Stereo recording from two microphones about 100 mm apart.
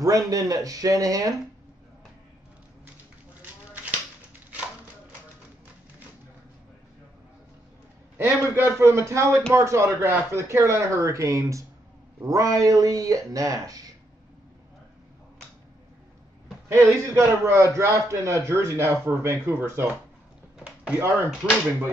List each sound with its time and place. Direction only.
0.0 s speech: 35° right (ahead or behind)
8.2 s a man's voice: 25° right (ahead or behind)
16.6 s a man's voice: 30° right (ahead or behind)
20.5 s a sound: 10° right (ahead or behind)
20.9 s a man's voice: 25° right (ahead or behind)